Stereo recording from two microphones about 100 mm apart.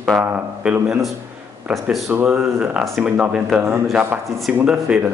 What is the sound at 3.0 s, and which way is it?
Speech, 10° right (ahead or behind).